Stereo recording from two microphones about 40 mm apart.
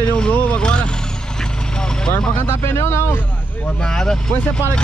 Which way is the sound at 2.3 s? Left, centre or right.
Left.